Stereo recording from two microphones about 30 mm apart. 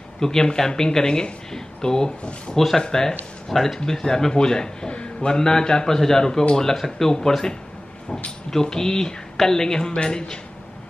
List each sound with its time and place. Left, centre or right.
0.2 s speech: left
2.5 s speech: centre